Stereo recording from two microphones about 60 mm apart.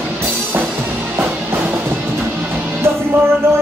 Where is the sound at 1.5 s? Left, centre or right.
Right.